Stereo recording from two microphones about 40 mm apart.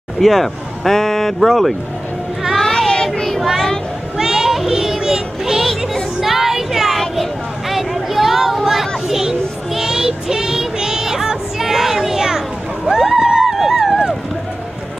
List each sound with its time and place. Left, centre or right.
0.2 s speech: centre
2.4 s child singing: centre
4.2 s child singing: centre
6.2 s music: centre
7.0 s a sound: centre
8.6 s child singing: centre